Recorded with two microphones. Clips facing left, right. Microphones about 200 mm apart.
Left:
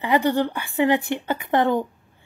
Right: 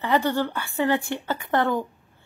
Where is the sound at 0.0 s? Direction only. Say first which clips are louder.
Left 3 dB; 15° left (ahead or behind).